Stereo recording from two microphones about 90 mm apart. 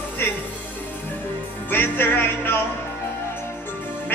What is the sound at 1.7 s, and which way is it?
Music, 25° left (ahead or behind).